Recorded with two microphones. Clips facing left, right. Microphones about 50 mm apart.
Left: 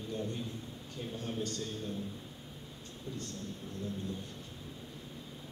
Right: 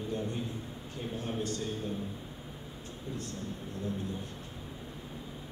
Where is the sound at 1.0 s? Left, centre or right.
Centre.